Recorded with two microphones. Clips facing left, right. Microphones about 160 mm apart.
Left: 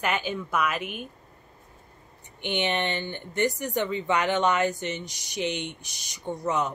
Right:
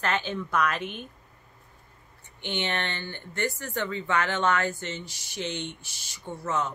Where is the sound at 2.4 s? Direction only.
15° left (ahead or behind).